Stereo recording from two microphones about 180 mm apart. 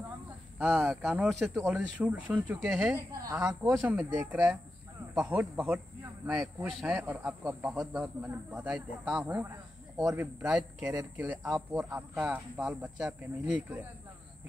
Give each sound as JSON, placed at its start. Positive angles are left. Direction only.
{"t": 0.6, "sound": "speech", "side_deg": -10}